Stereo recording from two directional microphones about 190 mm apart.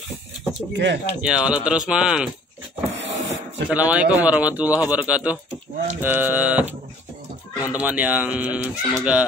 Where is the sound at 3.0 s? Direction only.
70° right (ahead or behind).